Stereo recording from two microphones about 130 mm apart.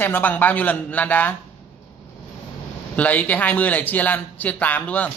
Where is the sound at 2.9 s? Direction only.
10° left (ahead or behind).